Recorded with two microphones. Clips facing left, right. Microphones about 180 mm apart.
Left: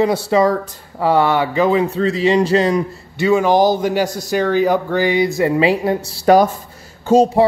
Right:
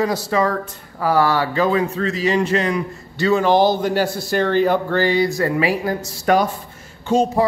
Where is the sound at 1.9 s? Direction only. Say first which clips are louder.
Left 4 dB; 30° left (ahead or behind).